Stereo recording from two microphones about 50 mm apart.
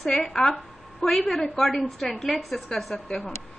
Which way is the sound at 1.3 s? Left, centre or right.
Centre.